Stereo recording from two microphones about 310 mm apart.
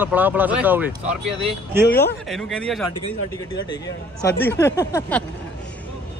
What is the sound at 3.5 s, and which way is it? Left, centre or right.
Speech, centre.